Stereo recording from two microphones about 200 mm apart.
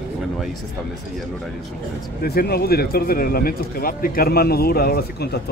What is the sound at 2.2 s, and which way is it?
Speech, 50° left (ahead or behind).